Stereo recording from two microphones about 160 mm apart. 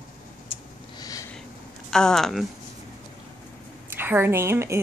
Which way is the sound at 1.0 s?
20° left (ahead or behind).